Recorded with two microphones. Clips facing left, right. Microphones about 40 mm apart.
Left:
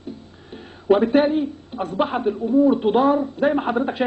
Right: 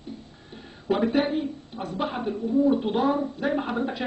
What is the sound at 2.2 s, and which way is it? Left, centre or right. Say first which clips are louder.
Speech: left 5 dB; centre.